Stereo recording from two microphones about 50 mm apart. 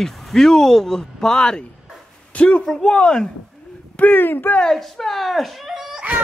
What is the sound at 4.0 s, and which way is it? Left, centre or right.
Speech, left.